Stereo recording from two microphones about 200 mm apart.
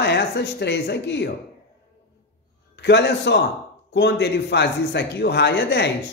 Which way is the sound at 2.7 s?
60° left (ahead or behind).